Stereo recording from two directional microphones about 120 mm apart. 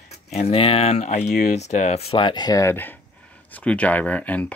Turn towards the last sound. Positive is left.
turn(degrees=10)  # may be behind; listen again after turning